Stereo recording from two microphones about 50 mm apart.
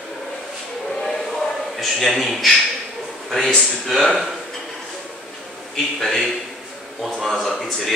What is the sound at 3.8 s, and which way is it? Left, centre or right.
Speech, centre.